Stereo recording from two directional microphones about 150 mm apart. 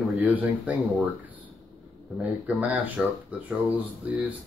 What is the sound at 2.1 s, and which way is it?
Speech, 10° right (ahead or behind).